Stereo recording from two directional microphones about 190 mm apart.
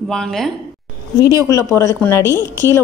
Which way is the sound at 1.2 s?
15° left (ahead or behind).